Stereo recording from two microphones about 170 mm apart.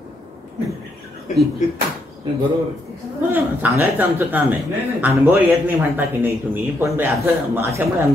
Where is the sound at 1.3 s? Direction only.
45° left (ahead or behind).